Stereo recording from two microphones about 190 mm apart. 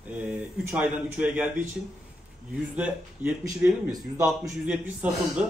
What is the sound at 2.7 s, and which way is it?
Speech, 10° right (ahead or behind).